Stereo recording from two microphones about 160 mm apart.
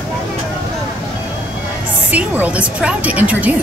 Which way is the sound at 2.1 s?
10° right (ahead or behind).